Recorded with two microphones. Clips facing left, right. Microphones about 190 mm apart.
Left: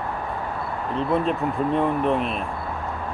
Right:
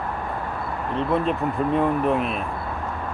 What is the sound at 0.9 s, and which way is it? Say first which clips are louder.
Speech: even; centre (ahead or behind).